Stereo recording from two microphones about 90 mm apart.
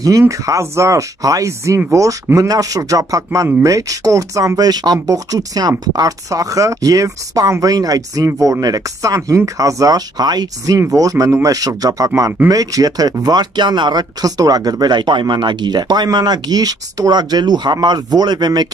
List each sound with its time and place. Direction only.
0.2 s speech: 35° right (ahead or behind); by 18.7 s 55° right (ahead or behind)